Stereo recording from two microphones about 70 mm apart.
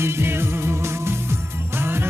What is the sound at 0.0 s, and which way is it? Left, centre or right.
Music, right.